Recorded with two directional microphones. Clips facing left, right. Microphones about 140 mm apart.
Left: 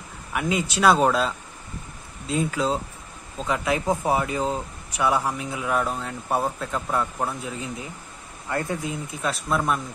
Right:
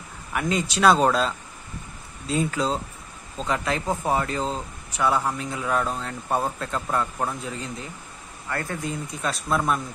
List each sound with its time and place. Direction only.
0.3 s speech: 5° left (ahead or behind)
8.9 s speech: centre (ahead or behind)